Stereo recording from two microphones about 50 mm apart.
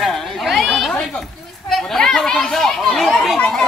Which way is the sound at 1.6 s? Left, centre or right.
Centre.